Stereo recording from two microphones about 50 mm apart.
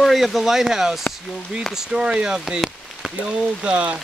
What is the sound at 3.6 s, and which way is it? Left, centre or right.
Speech, right.